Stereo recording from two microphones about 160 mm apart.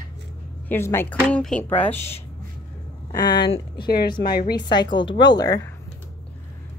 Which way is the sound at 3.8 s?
75° left (ahead or behind).